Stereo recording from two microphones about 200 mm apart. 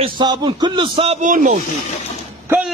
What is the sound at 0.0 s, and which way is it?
A man's voice, 20° right (ahead or behind).